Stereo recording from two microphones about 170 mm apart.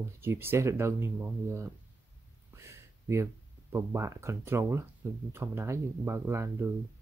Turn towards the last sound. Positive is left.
turn(degrees=-15)  # may be behind; listen again after turning